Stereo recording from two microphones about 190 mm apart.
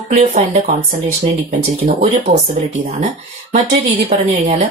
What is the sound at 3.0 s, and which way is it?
Speech, 40° right (ahead or behind).